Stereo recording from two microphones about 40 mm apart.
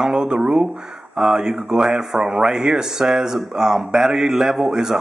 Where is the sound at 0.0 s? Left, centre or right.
Centre.